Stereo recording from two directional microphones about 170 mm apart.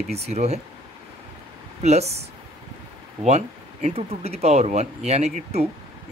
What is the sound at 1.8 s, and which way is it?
Speech, 40° right (ahead or behind).